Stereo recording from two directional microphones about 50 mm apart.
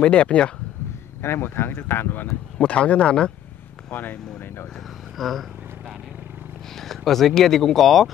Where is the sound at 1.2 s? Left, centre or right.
Left.